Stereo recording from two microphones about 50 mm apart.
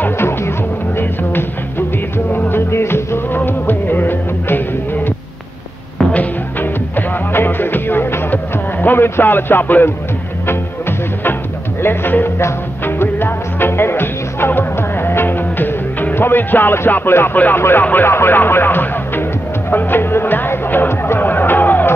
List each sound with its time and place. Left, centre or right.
0.2 s music: left
2.7 s music: left
3.3 s music: left
6.6 s music: left
8.9 s speech: left
10.4 s music: left
11.8 s speech: left
12.8 s music: left
17.6 s speech: left
19.7 s music: left